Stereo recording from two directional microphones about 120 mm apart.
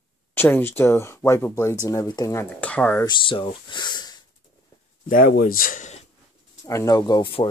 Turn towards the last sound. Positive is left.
turn(degrees=45)  # may be behind; listen again after turning